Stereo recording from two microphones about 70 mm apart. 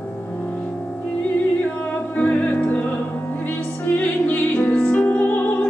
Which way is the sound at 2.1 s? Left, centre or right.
Left.